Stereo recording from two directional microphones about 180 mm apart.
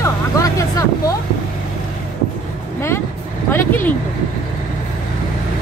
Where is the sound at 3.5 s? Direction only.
10° left (ahead or behind).